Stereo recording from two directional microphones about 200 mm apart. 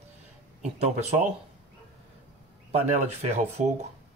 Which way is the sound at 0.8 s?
35° right (ahead or behind).